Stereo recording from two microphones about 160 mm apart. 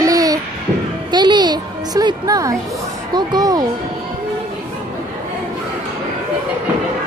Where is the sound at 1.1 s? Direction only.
25° right (ahead or behind).